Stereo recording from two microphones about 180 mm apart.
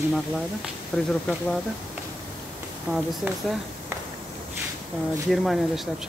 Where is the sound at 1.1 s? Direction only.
5° left (ahead or behind).